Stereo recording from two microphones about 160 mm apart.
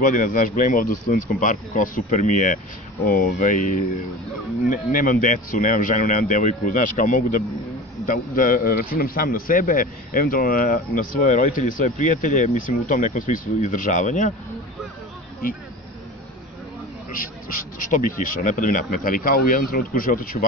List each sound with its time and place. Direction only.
0.0 s a man's voice: 55° left (ahead or behind)
17.7 s a man's voice: 55° left (ahead or behind)